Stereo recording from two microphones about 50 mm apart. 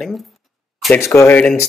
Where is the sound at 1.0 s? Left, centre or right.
Left.